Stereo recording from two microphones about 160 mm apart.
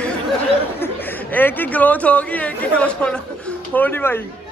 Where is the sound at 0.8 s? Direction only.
10° left (ahead or behind).